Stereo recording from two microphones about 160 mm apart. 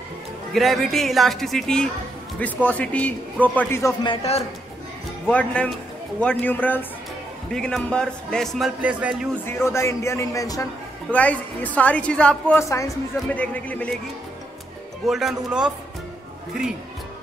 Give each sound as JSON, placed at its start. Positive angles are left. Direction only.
{"t": 0.5, "sound": "a man's voice", "side_deg": 0}
{"t": 4.0, "sound": "a man's voice", "side_deg": 35}
{"t": 5.3, "sound": "a man's voice", "side_deg": 10}
{"t": 9.5, "sound": "a man's voice", "side_deg": 15}
{"t": 11.1, "sound": "a man's voice", "side_deg": 10}
{"t": 12.6, "sound": "speech", "side_deg": 20}
{"t": 13.4, "sound": "a man's voice", "side_deg": 10}
{"t": 15.0, "sound": "speech", "side_deg": 0}